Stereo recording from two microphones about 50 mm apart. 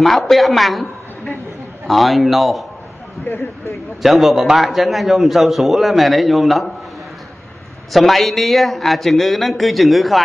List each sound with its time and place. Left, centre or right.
0.0 s a man's voice: centre
1.9 s a man's voice: centre
4.0 s a man's voice: centre
7.9 s a man's voice: centre